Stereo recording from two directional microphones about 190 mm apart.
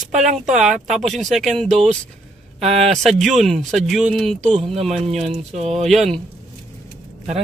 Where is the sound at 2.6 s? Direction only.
35° right (ahead or behind).